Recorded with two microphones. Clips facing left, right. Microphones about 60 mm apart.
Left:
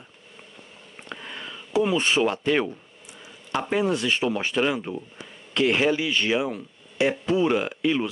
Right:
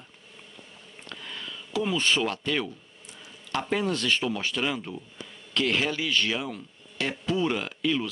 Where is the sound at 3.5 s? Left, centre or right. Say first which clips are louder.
Left 4 dB; centre.